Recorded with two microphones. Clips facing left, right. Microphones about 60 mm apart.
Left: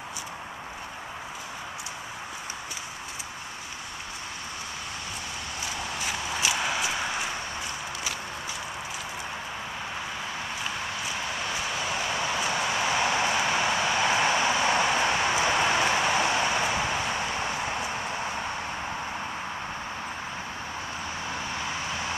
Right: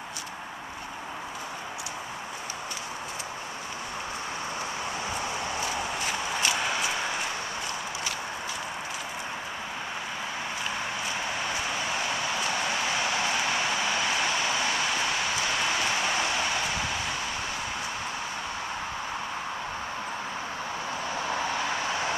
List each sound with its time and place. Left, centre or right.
5.9 s walk: centre
11.4 s vehicle: centre
12.2 s vehicle: centre
14.0 s vehicle: left
14.7 s a sound: left